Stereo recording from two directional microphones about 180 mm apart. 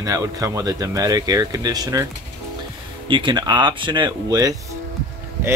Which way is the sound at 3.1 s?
25° right (ahead or behind).